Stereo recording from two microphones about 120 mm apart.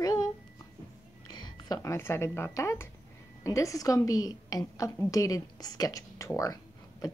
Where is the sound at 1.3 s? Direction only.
35° left (ahead or behind).